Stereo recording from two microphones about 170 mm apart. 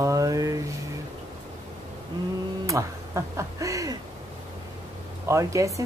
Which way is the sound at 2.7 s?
15° right (ahead or behind).